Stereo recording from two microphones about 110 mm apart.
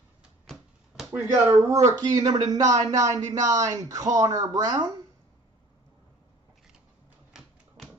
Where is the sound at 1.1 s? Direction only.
25° right (ahead or behind).